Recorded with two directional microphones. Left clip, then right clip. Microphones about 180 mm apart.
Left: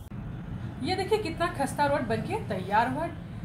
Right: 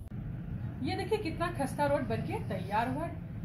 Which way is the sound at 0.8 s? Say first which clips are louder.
Left 6 dB; 20° left (ahead or behind).